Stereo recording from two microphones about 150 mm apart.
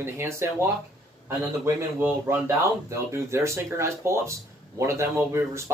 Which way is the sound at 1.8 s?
15° right (ahead or behind).